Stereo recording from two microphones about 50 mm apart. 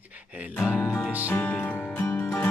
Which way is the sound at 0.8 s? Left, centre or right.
Left.